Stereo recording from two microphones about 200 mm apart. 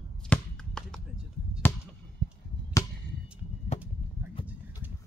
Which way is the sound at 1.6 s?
10° left (ahead or behind).